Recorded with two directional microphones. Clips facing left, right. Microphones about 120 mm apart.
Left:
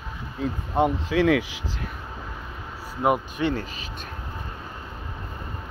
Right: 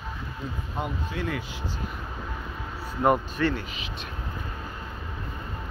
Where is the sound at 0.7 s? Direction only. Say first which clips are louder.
Left 11 dB; 80° left.